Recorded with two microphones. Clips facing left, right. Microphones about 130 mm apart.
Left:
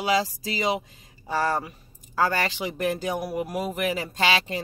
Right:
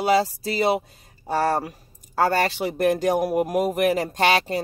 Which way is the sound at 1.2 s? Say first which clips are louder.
Right 3 dB; 35° right (ahead or behind).